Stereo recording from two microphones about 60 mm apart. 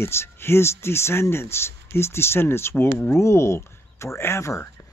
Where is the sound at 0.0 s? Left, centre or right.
Left.